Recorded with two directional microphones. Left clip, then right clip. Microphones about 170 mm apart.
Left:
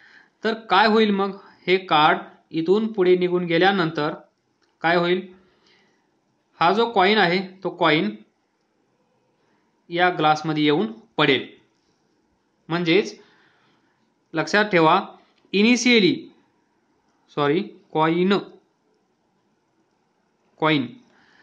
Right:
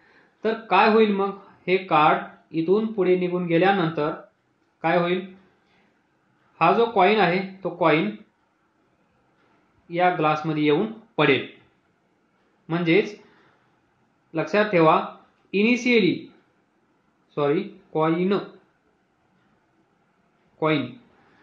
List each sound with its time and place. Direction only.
0.4 s speech: 40° left (ahead or behind)
6.6 s speech: 45° left (ahead or behind)
9.8 s speech: 40° left (ahead or behind)
12.6 s speech: 35° left (ahead or behind)
14.3 s speech: 40° left (ahead or behind)
17.3 s speech: 45° left (ahead or behind)
20.5 s speech: 45° left (ahead or behind)